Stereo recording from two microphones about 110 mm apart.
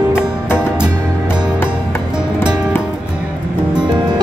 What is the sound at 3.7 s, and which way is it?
Music, 40° right (ahead or behind).